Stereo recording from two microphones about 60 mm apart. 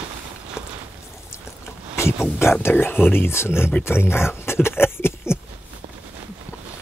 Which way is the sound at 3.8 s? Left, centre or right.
Left.